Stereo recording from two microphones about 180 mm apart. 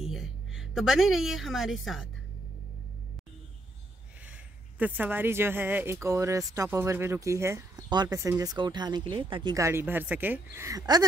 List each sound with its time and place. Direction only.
0.0 s a woman's voice: centre (ahead or behind)
4.7 s speech: 10° right (ahead or behind)